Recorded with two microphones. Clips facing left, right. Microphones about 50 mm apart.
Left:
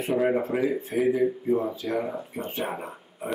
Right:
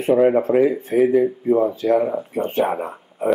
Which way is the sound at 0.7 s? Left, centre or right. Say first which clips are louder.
Right 7 dB; right.